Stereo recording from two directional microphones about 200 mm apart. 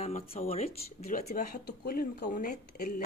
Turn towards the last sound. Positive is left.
turn(degrees=45)  # may be behind; listen again after turning